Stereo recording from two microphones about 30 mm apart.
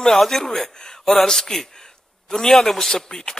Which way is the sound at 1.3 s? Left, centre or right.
Centre.